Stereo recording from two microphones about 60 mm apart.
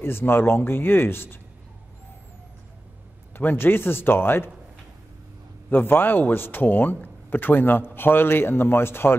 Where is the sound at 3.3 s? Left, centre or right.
Left.